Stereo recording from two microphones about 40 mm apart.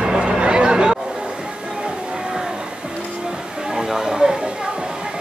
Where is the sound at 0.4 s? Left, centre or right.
Right.